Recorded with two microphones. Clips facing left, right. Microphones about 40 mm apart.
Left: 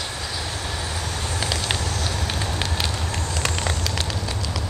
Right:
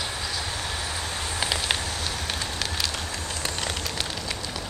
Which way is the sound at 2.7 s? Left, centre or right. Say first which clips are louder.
Left 3 dB; left.